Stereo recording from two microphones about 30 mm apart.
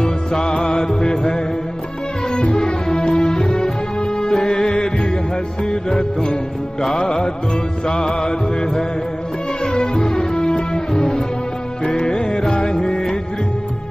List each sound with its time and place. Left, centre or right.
0.0 s music: left
2.5 s music: left